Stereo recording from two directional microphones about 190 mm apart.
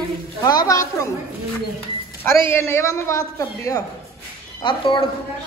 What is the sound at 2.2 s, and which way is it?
A woman's voice, 15° left (ahead or behind).